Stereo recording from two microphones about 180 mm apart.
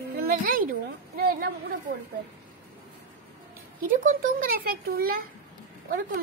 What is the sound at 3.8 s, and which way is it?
A child's voice, 45° right (ahead or behind).